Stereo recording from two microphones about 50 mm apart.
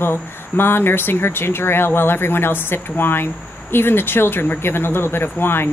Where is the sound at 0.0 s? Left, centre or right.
Left.